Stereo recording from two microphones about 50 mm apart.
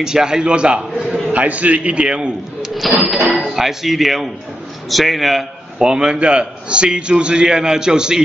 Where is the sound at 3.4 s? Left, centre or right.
Centre.